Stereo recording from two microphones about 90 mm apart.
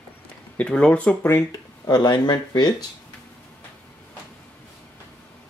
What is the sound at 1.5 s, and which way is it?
Speech, 50° left (ahead or behind).